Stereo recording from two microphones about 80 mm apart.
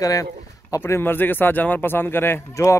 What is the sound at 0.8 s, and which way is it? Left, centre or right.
Speech, left.